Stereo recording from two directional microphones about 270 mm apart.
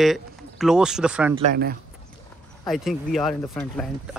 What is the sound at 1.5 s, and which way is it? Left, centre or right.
Speech, right.